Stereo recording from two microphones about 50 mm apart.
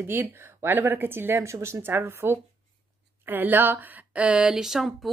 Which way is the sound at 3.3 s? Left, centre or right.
Right.